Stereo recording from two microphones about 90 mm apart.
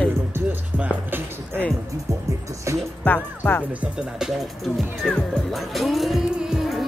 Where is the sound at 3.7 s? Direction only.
15° right (ahead or behind).